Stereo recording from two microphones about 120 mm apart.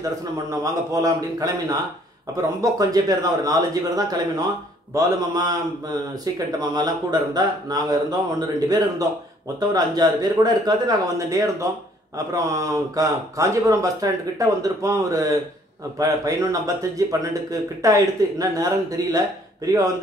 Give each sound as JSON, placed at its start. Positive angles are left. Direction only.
{"t": 0.0, "sound": "speech", "side_deg": -30}